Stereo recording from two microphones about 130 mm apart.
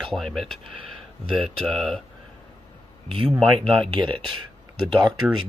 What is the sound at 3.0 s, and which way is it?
Speech, 45° right (ahead or behind).